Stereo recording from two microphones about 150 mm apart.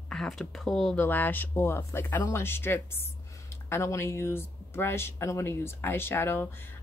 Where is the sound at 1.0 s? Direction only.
15° left (ahead or behind).